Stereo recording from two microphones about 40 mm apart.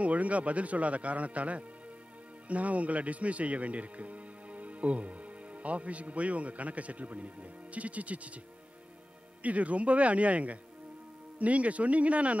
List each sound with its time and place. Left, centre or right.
0.0 s speech: right
9.4 s speech: right